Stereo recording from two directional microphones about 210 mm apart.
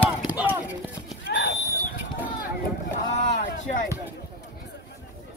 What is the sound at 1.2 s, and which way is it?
Horse, 55° left (ahead or behind).